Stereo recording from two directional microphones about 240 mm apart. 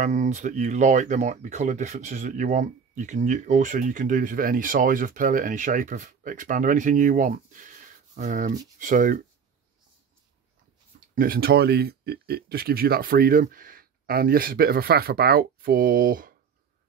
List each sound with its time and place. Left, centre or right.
0.0 s speech: right
11.1 s speech: right